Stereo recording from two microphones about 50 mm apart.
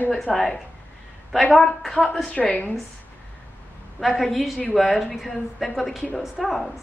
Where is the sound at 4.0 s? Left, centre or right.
Centre.